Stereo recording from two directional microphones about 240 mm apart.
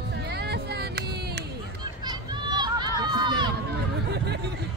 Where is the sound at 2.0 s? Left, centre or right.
Centre.